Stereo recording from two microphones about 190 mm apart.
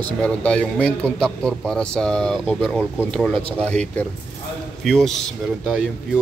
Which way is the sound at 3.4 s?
30° right (ahead or behind).